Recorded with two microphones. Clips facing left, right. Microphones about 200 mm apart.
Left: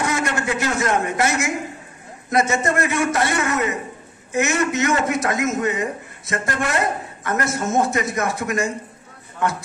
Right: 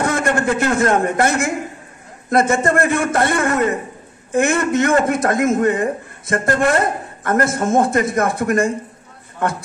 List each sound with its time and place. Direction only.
0.0 s a man's voice: 55° right (ahead or behind)